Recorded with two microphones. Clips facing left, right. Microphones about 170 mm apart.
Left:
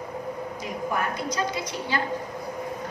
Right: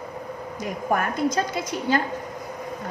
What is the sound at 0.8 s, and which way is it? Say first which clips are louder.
A woman's voice: right 6 dB; 50° right (ahead or behind).